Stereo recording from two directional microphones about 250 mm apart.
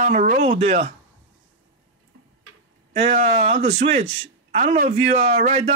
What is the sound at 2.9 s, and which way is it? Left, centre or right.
Speech, right.